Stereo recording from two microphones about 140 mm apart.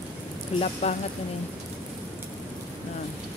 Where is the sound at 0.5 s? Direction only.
45° left (ahead or behind).